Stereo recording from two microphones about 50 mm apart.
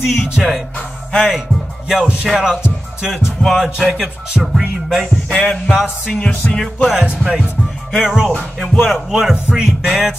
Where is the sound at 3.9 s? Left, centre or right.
Centre.